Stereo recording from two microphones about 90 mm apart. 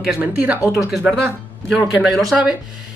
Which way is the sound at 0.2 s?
15° right (ahead or behind).